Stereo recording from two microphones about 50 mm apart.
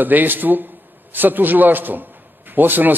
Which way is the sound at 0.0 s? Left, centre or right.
Right.